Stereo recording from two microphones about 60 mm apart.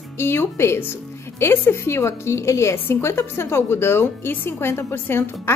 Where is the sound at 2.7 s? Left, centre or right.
Left.